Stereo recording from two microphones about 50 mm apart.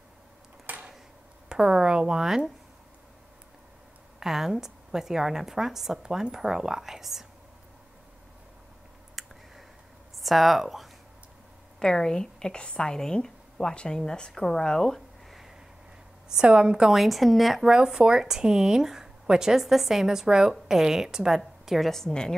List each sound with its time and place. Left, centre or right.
0.7 s a sound: right
1.6 s a woman's voice: centre
4.2 s a woman's voice: centre
9.2 s a sound: centre
10.2 s a woman's voice: centre
11.8 s a woman's voice: centre
16.3 s a woman's voice: centre
16.9 s a woman's voice: centre
17.6 s a woman's voice: centre
21.6 s a woman's voice: centre